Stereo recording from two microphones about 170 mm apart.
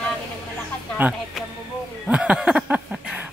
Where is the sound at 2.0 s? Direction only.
5° right (ahead or behind).